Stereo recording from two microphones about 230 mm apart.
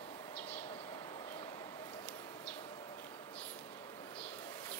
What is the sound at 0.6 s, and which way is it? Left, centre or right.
Vehicle, left.